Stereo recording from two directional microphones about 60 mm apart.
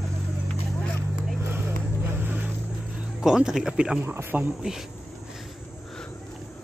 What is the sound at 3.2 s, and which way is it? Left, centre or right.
Speech, centre.